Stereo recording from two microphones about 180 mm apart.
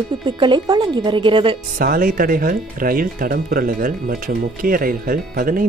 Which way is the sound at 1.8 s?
50° right (ahead or behind).